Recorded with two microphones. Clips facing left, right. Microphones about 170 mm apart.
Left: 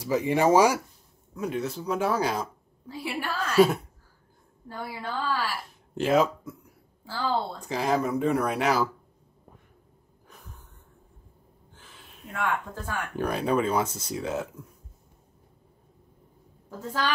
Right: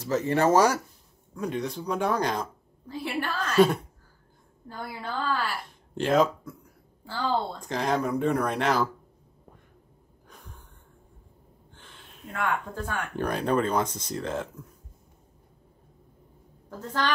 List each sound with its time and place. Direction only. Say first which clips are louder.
0.0 s a woman's voice: left 1 dB; 10° left (ahead or behind)
10.2 s a sound: even; 5° left (ahead or behind)
11.7 s a woman's voice: even; 5° left (ahead or behind)
16.6 s a woman's voice: even; 10° left (ahead or behind)